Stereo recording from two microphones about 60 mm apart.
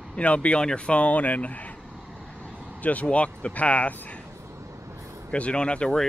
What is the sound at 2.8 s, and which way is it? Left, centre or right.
Speech, left.